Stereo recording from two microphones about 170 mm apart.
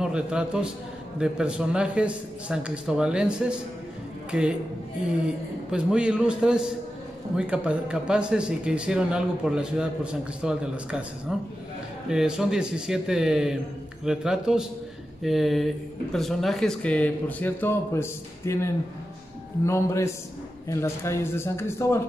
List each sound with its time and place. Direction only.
0.0 s speech: 5° right (ahead or behind); by 22.0 s 15° left (ahead or behind)